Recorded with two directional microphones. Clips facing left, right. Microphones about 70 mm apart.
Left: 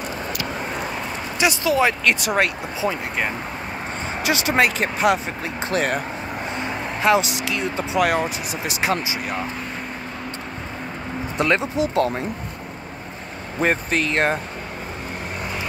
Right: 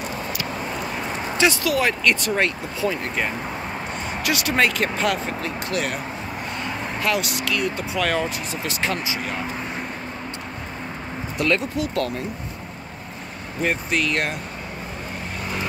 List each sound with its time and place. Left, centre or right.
1.4 s speech: left
1.9 s speech: centre
4.1 s speech: left
6.5 s speech: left
11.3 s speech: left
13.6 s speech: left